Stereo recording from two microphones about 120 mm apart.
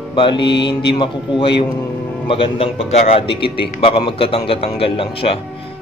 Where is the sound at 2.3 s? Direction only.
50° left (ahead or behind).